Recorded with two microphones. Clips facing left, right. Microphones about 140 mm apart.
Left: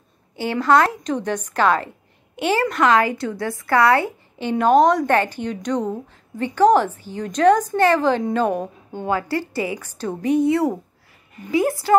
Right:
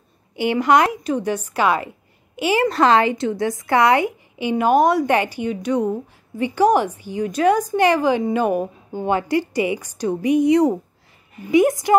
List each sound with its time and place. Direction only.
0.4 s a woman's voice: 15° right (ahead or behind)
2.7 s a woman's voice: 30° right (ahead or behind)